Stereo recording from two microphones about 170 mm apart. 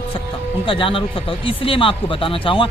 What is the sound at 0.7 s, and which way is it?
Speech, 30° left (ahead or behind).